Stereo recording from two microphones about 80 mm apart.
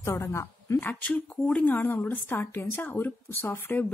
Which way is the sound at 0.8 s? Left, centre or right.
Left.